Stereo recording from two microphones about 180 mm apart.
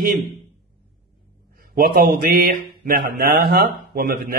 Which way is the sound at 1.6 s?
55° right (ahead or behind).